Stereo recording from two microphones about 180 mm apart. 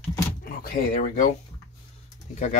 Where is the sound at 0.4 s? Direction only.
55° left (ahead or behind).